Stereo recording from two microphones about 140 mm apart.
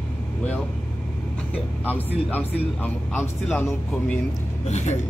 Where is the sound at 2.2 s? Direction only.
10° left (ahead or behind).